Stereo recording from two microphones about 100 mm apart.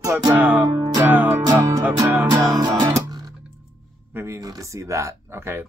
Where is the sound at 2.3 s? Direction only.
30° right (ahead or behind).